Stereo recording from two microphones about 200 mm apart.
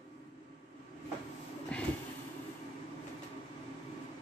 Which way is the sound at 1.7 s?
5° left (ahead or behind).